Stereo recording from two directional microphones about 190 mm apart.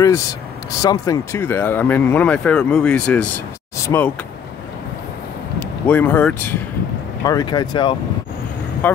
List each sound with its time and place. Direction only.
0.0 s speech: 20° left (ahead or behind)
5.6 s speech: 10° left (ahead or behind)
7.2 s speech: 20° left (ahead or behind)
8.8 s speech: 10° left (ahead or behind)